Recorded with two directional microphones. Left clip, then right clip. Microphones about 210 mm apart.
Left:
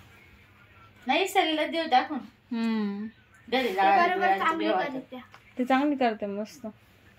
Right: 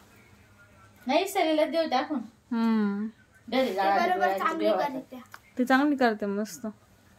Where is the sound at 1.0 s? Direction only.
15° right (ahead or behind).